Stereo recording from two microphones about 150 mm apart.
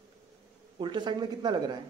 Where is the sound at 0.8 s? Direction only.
30° right (ahead or behind).